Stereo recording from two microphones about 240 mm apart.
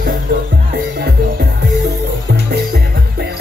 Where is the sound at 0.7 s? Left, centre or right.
Right.